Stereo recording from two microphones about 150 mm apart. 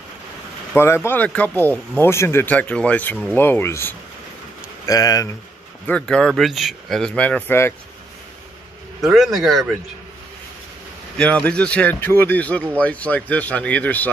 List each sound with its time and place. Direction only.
0.7 s speech: 15° left (ahead or behind)
5.9 s speech: 5° left (ahead or behind)
9.0 s speech: centre (ahead or behind)
11.1 s speech: 10° left (ahead or behind)